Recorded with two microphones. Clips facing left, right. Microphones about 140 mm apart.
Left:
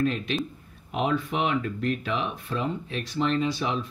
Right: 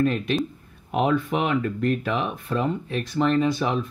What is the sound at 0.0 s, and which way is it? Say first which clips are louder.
Speech: right 4 dB; 50° right (ahead or behind).